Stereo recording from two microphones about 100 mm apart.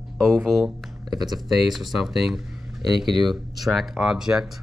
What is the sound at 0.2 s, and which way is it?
Speech, centre (ahead or behind).